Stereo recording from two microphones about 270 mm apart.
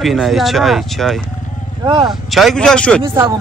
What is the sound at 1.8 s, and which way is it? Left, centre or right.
Speech, centre.